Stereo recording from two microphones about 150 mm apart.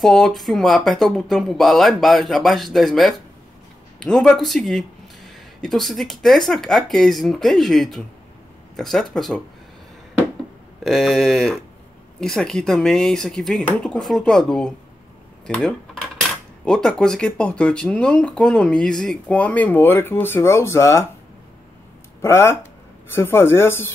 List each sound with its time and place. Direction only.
0.0 s speech: centre (ahead or behind)
10.8 s speech: centre (ahead or behind)
15.4 s cutlery: 5° left (ahead or behind)
16.6 s speech: 5° left (ahead or behind)
22.2 s speech: 20° left (ahead or behind)